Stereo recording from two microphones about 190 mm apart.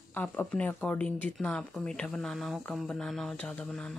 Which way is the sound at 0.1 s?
10° left (ahead or behind).